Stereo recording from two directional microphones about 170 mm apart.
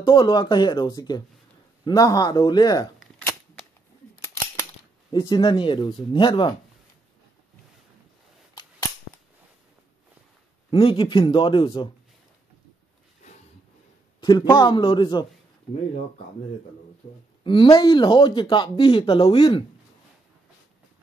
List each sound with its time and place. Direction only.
0.0 s speech: 30° left (ahead or behind)
5.1 s speech: 25° left (ahead or behind)
10.7 s speech: 30° left (ahead or behind)
14.2 s speech: 25° left (ahead or behind)
17.4 s speech: 30° left (ahead or behind)